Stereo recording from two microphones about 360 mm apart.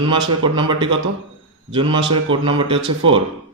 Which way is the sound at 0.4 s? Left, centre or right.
Centre.